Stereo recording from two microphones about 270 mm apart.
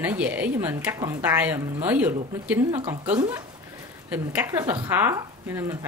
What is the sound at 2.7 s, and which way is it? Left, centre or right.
Speech, centre.